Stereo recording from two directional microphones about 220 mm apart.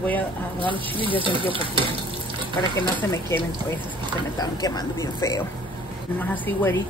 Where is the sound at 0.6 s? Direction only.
25° right (ahead or behind).